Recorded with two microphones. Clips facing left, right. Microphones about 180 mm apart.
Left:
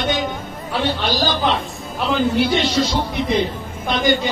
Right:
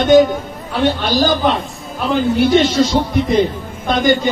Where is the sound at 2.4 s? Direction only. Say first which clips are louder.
Right 6 dB; 45° right (ahead or behind).